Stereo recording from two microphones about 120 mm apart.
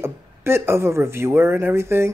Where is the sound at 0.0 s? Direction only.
20° right (ahead or behind).